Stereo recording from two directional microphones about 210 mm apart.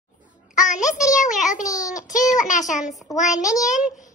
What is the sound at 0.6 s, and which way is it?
Speech, 35° left (ahead or behind).